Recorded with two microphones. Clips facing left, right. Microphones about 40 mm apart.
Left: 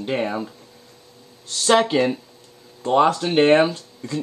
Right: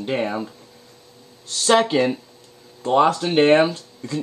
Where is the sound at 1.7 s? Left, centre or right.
Centre.